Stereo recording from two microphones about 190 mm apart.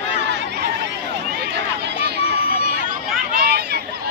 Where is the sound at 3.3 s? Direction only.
60° right (ahead or behind).